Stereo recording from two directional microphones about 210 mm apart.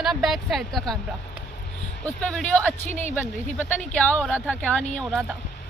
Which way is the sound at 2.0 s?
5° left (ahead or behind).